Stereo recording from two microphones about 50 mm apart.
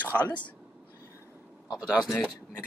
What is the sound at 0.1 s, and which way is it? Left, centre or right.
Speech, left.